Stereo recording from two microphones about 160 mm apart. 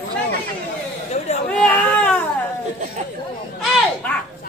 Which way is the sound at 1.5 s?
10° left (ahead or behind).